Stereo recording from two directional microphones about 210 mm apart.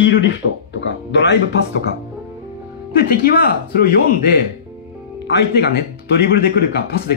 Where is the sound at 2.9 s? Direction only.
45° left (ahead or behind).